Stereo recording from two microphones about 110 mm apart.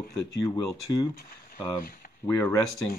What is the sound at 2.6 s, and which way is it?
Speech, 5° left (ahead or behind).